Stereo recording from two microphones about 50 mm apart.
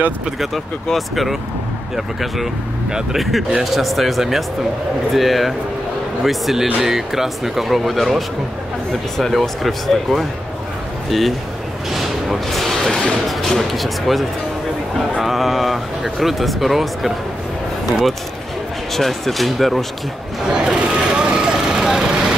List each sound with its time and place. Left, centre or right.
0.9 s speech: centre
3.2 s speech: centre
11.9 s a sound: centre
13.3 s speech: centre
18.9 s speech: centre
20.5 s vehicle: centre